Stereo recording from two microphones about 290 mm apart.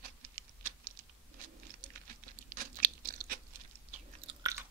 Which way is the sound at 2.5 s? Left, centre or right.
Right.